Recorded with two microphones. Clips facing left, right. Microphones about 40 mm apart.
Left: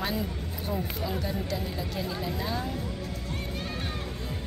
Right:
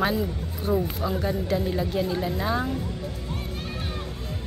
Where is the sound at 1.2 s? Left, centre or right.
Right.